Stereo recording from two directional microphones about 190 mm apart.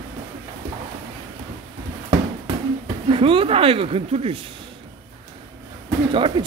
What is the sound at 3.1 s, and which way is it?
Speech, 30° right (ahead or behind).